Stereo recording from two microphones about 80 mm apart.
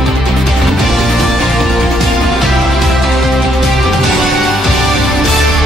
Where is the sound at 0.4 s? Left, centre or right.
Centre.